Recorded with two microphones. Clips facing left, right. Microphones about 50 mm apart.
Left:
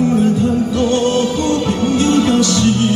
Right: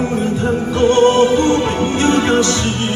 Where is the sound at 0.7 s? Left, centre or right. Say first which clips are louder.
Right 7 dB; right.